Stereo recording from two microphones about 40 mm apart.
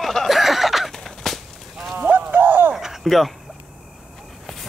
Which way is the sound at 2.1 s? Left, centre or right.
Right.